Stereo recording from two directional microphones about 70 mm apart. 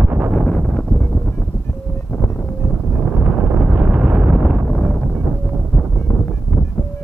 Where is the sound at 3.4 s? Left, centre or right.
Right.